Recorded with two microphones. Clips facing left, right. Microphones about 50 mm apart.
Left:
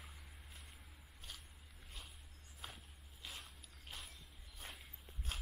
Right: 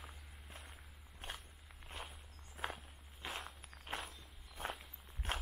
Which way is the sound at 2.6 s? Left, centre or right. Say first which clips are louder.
Right 10 dB; right.